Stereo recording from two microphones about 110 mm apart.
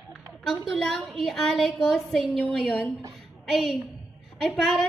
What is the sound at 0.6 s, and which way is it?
A woman's voice, 5° left (ahead or behind).